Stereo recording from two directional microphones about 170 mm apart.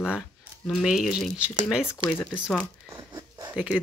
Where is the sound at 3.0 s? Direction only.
20° right (ahead or behind).